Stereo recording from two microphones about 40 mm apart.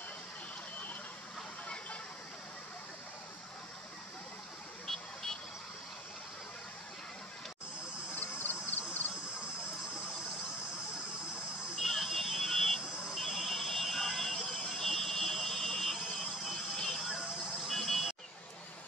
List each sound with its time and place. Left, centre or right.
4.8 s vehicle: centre
8.2 s a sound: left
12.2 s buzzer: centre
17.6 s music: centre